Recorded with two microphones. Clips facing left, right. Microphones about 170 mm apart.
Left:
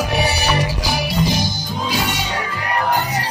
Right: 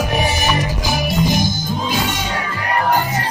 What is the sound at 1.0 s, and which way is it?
Music, 45° right (ahead or behind).